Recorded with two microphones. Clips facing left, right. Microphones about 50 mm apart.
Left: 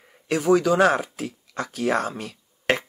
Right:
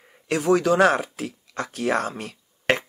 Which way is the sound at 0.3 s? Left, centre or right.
Right.